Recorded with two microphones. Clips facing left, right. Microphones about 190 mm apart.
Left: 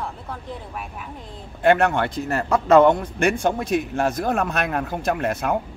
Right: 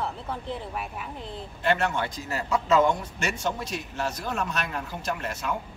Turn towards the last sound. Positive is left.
turn(degrees=55)  # may be behind; listen again after turning